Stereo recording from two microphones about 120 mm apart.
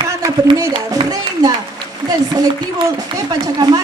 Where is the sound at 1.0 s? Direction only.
50° right (ahead or behind).